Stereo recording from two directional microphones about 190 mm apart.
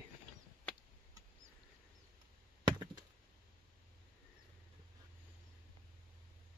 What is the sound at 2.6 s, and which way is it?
Chop, 20° right (ahead or behind).